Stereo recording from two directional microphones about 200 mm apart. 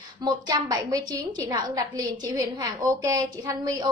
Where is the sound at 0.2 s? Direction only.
20° right (ahead or behind).